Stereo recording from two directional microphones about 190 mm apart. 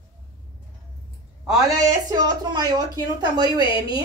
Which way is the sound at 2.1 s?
20° right (ahead or behind).